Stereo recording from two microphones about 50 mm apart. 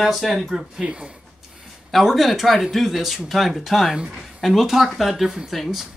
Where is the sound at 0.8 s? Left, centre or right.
Right.